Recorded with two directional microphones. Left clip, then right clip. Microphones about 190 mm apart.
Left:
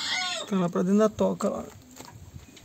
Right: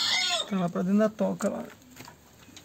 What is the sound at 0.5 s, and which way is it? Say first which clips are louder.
Speech: left 3 dB; 30° left (ahead or behind).